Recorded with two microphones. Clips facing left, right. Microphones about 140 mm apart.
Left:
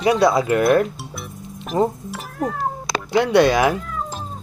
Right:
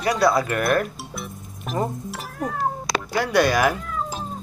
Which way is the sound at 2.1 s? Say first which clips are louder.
Left 3 dB; centre (ahead or behind).